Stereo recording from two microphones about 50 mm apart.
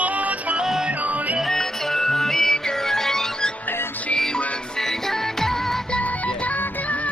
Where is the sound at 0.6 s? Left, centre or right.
Centre.